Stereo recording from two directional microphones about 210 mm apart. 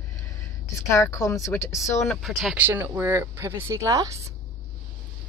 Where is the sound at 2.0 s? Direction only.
Centre (ahead or behind); by 4.2 s 15° right (ahead or behind).